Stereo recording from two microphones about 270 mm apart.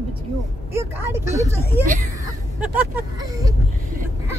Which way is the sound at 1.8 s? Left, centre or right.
Centre.